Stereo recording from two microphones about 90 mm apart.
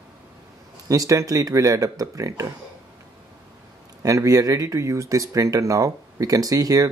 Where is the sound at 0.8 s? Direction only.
40° right (ahead or behind).